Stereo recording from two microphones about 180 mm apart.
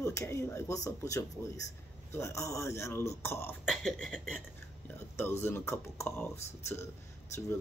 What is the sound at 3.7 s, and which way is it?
Speech, centre (ahead or behind).